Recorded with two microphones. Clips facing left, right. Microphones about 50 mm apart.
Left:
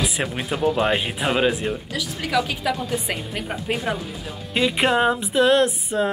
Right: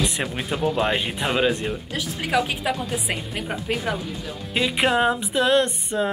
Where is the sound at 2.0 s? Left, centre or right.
Right.